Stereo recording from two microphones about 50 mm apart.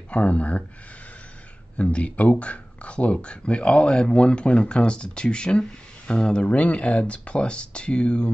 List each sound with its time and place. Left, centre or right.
0.1 s speech: left
1.8 s speech: left